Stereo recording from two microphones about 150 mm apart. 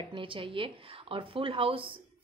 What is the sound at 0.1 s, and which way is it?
A woman's voice, 35° right (ahead or behind).